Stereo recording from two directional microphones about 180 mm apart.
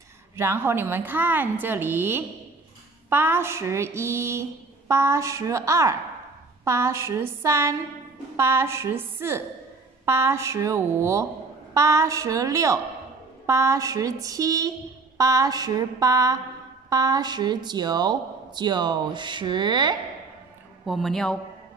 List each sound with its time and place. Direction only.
0.4 s a sound: 15° right (ahead or behind)
13.5 s speech: 15° right (ahead or behind)
20.8 s a man's voice: centre (ahead or behind)